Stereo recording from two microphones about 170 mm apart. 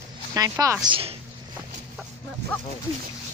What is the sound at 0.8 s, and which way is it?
Speech, 30° right (ahead or behind).